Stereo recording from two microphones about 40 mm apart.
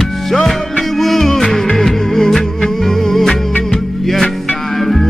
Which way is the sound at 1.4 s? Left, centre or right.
Centre.